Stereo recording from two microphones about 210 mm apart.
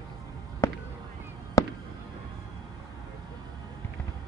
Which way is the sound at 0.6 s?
15° left (ahead or behind).